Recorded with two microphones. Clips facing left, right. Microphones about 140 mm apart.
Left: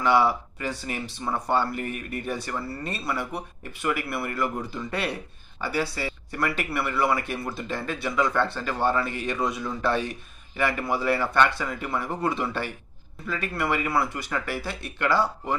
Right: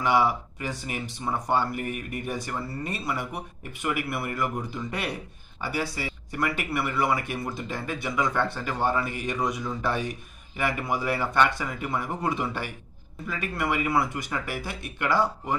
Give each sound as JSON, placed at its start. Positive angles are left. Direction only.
{"t": 0.0, "sound": "speech", "side_deg": -15}